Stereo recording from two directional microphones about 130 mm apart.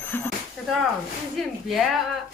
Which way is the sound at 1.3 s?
Centre (ahead or behind).